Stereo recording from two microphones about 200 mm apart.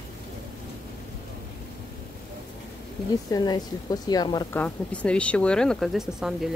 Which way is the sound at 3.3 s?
20° left (ahead or behind).